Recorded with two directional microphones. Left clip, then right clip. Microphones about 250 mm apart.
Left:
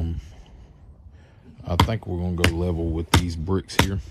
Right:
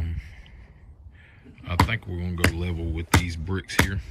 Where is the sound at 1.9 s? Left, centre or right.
Centre.